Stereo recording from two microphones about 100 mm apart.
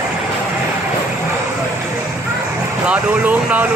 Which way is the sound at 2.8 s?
15° right (ahead or behind).